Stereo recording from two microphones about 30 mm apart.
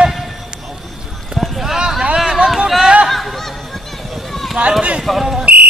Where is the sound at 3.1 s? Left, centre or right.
Centre.